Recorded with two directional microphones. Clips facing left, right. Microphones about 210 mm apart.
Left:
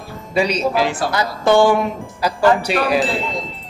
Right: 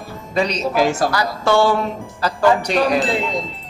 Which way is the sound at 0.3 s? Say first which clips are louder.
Left 2 dB; 10° left (ahead or behind).